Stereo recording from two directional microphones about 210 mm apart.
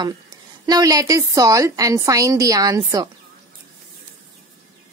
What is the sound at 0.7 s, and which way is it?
A woman's voice, 15° right (ahead or behind).